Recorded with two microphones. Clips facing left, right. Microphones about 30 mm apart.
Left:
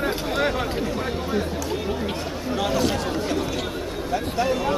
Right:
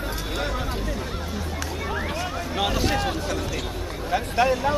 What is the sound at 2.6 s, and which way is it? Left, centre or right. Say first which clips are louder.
Speech: even; centre.